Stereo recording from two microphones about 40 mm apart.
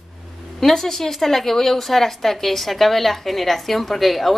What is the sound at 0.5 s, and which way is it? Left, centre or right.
Speech, centre.